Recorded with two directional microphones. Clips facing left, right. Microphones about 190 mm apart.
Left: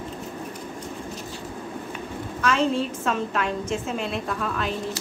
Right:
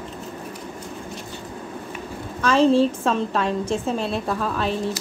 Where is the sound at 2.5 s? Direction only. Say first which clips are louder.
Right 7 dB; 30° right (ahead or behind).